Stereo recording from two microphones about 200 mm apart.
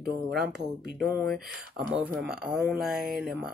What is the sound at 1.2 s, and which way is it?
Speech, centre (ahead or behind).